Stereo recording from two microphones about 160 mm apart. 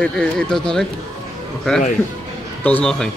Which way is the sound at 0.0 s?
5° left (ahead or behind).